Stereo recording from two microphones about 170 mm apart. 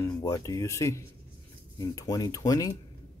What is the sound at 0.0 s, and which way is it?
Speech, 20° left (ahead or behind).